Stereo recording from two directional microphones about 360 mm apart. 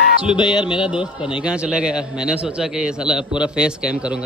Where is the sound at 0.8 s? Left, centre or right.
Centre.